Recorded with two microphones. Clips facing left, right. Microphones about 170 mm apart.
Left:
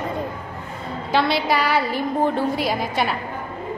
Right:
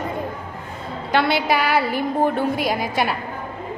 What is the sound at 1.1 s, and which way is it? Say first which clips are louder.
A woman's voice: right 1 dB; centre (ahead or behind).